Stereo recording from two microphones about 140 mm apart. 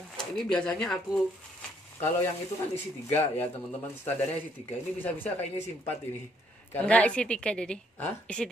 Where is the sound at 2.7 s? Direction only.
15° left (ahead or behind).